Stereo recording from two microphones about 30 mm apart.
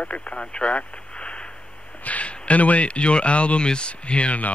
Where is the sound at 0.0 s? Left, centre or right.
Left.